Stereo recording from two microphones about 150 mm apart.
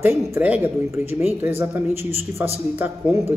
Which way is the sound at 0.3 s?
10° right (ahead or behind).